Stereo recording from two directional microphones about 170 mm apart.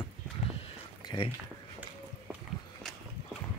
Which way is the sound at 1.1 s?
25° left (ahead or behind).